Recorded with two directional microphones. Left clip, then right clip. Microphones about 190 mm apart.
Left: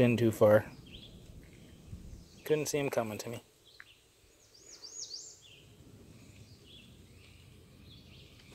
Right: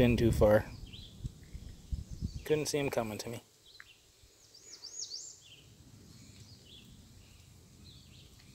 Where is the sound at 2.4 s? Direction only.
5° right (ahead or behind).